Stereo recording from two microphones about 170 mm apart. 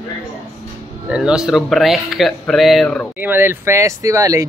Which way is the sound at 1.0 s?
5° right (ahead or behind).